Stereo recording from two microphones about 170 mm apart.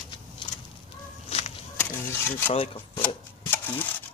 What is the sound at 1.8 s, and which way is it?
Speech, 10° left (ahead or behind).